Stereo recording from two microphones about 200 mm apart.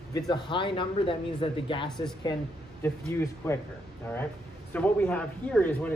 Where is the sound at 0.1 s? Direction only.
25° left (ahead or behind).